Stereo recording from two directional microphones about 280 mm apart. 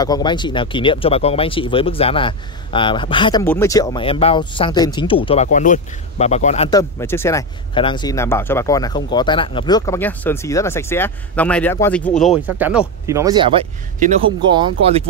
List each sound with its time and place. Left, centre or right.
0.0 s speech: centre
6.8 s speech: centre; by 15.0 s right